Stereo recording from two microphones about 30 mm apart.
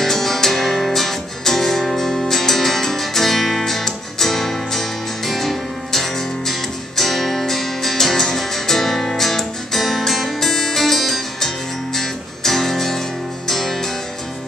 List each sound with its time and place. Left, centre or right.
0.0 s music: centre